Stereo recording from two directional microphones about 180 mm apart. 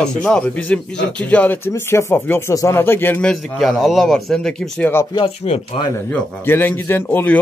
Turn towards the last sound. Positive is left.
turn(degrees=10)  # may be behind; listen again after turning